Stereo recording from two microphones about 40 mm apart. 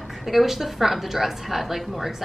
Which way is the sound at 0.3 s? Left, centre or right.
Centre.